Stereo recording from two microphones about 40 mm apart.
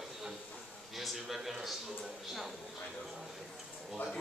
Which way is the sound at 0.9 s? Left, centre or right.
Centre.